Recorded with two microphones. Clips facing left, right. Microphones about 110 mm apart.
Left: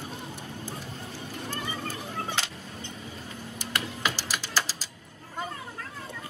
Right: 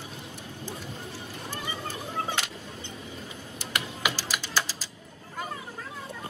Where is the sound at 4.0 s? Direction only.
15° right (ahead or behind).